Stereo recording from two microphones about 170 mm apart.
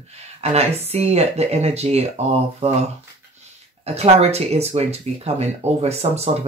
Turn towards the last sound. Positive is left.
turn(degrees=-40)  # may be behind; listen again after turning